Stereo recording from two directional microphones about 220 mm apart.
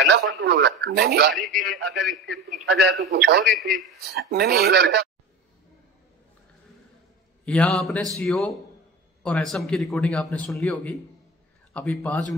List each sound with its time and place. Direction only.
0.5 s speech: 50° right (ahead or behind)
1.3 s a man's voice: centre (ahead or behind)
2.5 s speech: 50° right (ahead or behind)
3.4 s a man's voice: centre (ahead or behind)
4.1 s speech: 45° right (ahead or behind)
7.4 s a man's voice: 5° left (ahead or behind)